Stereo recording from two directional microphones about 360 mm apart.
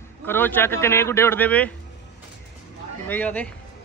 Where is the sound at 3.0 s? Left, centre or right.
Centre.